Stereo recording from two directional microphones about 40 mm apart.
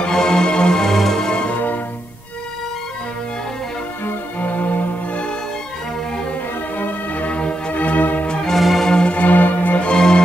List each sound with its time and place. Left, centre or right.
0.0 s music: centre
4.4 s music: left
7.2 s music: left
7.7 s music: left
8.3 s music: centre
8.5 s organ: centre
8.8 s music: left
9.1 s music: left
9.8 s music: left